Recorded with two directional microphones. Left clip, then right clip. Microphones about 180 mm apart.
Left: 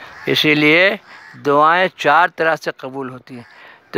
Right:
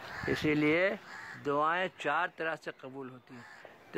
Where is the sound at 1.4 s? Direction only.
45° left (ahead or behind).